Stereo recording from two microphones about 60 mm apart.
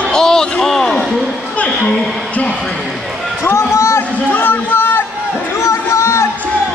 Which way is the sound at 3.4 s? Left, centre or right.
Left.